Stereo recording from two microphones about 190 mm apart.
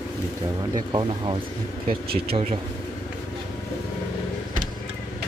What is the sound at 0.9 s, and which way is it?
Speech, 25° right (ahead or behind).